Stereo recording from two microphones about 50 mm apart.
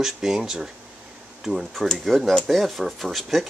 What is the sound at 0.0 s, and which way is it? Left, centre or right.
Speech, centre.